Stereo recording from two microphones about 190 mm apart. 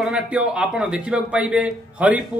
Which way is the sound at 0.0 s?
5° right (ahead or behind).